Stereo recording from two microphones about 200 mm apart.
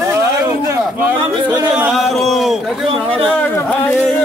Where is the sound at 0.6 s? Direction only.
15° right (ahead or behind).